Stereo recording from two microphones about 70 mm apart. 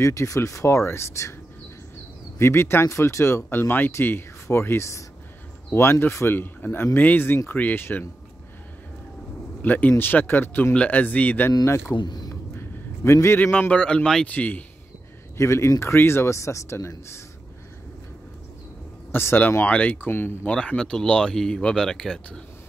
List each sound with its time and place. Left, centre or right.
0.0 s speech: left
2.3 s speech: left
9.6 s speech: left
11.9 s speech: left
12.5 s a sound: left
13.4 s speech: left
14.2 s speech: left
15.3 s speech: left
19.1 s speech: left
19.6 s speech: centre
20.0 s speech: left
20.4 s speech: centre